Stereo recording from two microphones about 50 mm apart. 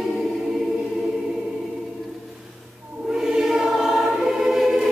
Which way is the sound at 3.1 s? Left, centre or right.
Centre.